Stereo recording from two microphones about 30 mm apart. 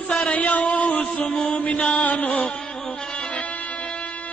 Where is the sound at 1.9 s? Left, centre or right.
Left.